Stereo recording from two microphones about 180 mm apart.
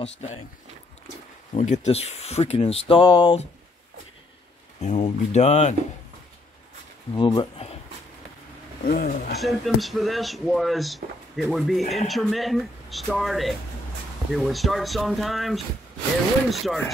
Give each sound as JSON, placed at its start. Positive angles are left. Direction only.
{"t": 0.0, "sound": "speech", "side_deg": 35}
{"t": 1.5, "sound": "speech", "side_deg": 40}
{"t": 4.8, "sound": "speech", "side_deg": 40}
{"t": 7.2, "sound": "speech", "side_deg": 30}
{"t": 8.8, "sound": "speech", "side_deg": 50}
{"t": 9.4, "sound": "speech", "side_deg": 0}